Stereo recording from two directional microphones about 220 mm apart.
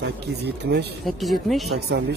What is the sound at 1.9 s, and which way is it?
Speech, 50° right (ahead or behind).